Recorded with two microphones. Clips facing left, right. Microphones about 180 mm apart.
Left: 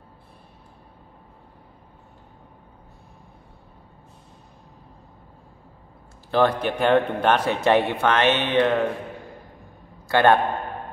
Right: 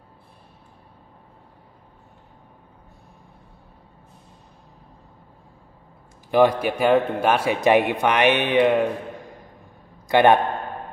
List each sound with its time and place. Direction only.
6.3 s a man's voice: 10° right (ahead or behind)
10.0 s a man's voice: 15° right (ahead or behind)